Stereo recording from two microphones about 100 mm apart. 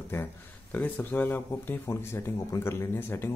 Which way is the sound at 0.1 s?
25° left (ahead or behind).